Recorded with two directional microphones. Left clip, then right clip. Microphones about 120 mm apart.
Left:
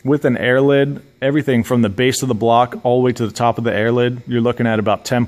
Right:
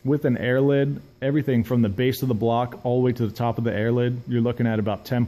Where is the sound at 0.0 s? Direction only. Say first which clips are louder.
Left 7 dB; 25° left (ahead or behind).